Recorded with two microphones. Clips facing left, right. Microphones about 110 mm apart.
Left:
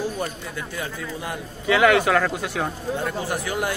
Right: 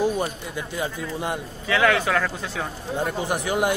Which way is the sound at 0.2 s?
20° right (ahead or behind).